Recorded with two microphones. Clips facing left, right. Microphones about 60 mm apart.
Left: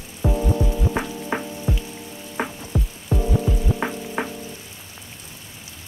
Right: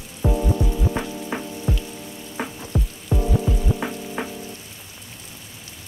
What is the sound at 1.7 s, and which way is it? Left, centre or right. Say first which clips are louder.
Rain on surface: even; left.